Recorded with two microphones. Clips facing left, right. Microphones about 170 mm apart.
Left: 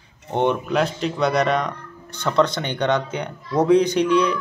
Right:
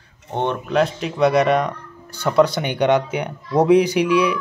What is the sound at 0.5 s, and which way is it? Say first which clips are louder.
Speech: right 2 dB; centre (ahead or behind).